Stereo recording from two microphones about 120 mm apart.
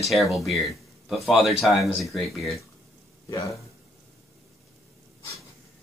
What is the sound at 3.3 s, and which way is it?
Speech, 25° left (ahead or behind).